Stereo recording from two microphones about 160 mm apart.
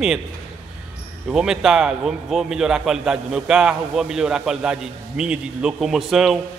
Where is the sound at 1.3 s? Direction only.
5° right (ahead or behind).